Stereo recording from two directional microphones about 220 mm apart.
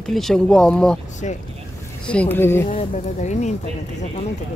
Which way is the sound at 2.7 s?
30° left (ahead or behind).